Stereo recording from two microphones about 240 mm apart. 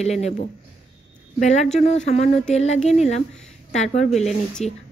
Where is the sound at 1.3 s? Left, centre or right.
Left.